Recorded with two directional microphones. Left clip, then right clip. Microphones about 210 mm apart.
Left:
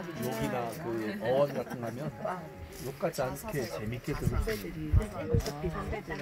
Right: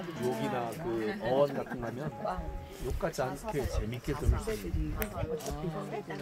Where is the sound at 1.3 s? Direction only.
55° left (ahead or behind).